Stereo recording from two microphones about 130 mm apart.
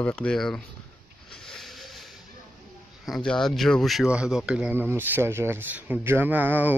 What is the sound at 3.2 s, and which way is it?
Speech, 5° left (ahead or behind).